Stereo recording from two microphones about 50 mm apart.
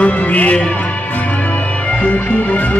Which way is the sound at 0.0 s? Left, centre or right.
Left.